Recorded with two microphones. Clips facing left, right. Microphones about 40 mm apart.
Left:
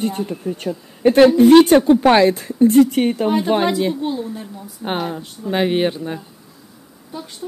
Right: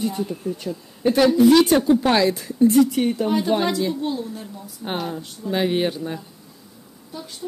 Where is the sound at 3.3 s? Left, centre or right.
Left.